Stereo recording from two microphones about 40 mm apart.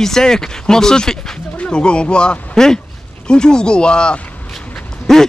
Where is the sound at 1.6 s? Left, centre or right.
Left.